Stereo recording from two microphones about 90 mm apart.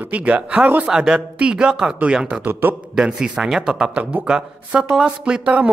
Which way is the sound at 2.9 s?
5° right (ahead or behind).